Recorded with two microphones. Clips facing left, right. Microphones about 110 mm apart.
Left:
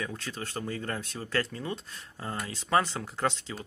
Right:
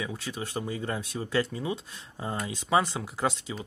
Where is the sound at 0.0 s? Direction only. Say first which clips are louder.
Right 2 dB; 10° right (ahead or behind).